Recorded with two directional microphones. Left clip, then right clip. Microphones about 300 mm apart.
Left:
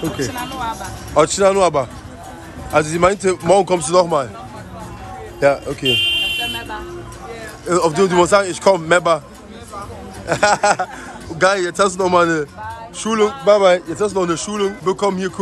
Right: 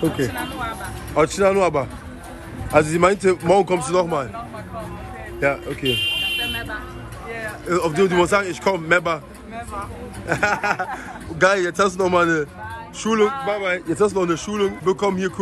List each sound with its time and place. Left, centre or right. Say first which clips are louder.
1.1 s speech: left 4 dB; centre
5.4 s a man's voice: left 6 dB; centre
5.9 s a sound: left 5 dB; left
6.4 s music: left 2 dB; centre
7.6 s a man's voice: left 4 dB; centre
10.2 s speech: left 6 dB; centre
13.5 s a man's voice: left 11 dB; centre
13.7 s speech: left 1 dB; centre